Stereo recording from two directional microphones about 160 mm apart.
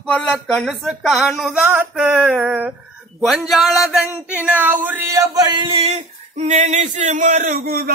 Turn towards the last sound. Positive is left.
turn(degrees=-65)  # may be behind; listen again after turning